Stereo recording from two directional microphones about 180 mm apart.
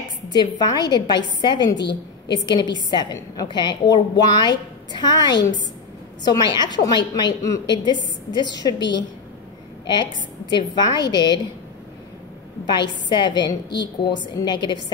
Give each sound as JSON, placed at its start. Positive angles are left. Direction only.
{"t": 0.3, "sound": "a woman's voice", "side_deg": 25}
{"t": 12.7, "sound": "a woman's voice", "side_deg": 25}